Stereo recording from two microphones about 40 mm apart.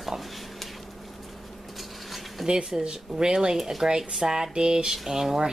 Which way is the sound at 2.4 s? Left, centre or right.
Centre.